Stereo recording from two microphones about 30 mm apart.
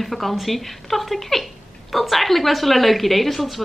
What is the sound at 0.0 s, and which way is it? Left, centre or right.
Speech, centre.